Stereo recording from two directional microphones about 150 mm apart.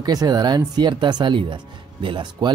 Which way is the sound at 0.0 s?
25° right (ahead or behind).